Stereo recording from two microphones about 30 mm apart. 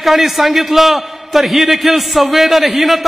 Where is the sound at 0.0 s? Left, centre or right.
Centre.